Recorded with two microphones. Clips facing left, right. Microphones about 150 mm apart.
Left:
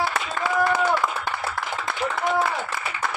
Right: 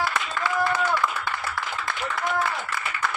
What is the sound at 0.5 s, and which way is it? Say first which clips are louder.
Clapping: left 3 dB; 30° left (ahead or behind).